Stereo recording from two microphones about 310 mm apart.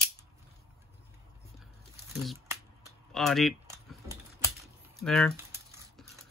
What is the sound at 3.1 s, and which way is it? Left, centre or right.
Speech, centre.